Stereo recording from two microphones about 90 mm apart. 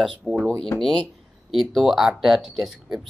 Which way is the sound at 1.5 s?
Centre (ahead or behind).